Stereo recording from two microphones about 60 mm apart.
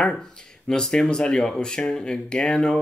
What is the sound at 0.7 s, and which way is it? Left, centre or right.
Speech, centre.